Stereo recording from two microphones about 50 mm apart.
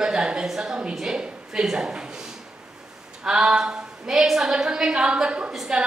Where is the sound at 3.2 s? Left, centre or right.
Centre.